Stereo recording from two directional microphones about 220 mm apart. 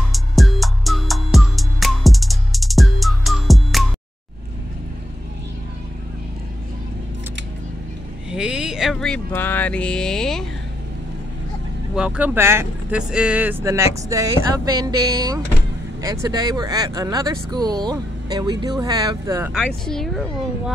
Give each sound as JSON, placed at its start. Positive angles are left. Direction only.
{"t": 0.1, "sound": "music", "side_deg": 0}
{"t": 8.3, "sound": "speech", "side_deg": -5}
{"t": 11.9, "sound": "speech", "side_deg": -5}
{"t": 19.5, "sound": "speech", "side_deg": 0}